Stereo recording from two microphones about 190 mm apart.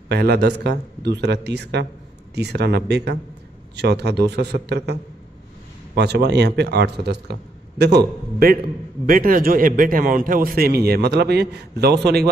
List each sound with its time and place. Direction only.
0.1 s a man's voice: 60° right (ahead or behind)
5.9 s a man's voice: 60° right (ahead or behind)